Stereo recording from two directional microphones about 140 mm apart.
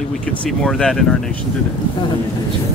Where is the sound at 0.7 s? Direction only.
5° left (ahead or behind).